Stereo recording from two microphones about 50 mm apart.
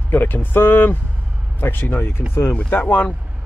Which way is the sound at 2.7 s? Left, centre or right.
Left.